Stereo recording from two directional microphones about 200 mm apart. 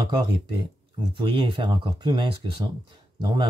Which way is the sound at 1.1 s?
25° right (ahead or behind).